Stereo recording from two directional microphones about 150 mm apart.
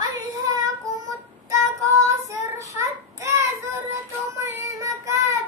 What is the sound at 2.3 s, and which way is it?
Child singing, 20° right (ahead or behind).